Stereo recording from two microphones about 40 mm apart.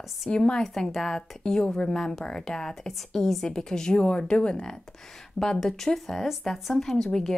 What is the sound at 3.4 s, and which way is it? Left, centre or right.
Speech, centre.